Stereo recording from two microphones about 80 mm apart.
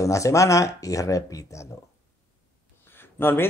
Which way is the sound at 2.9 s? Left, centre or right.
Left.